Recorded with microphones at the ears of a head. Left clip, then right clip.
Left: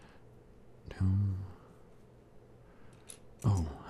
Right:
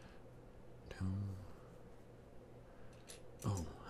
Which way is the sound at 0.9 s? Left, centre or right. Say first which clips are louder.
Left 9 dB; left.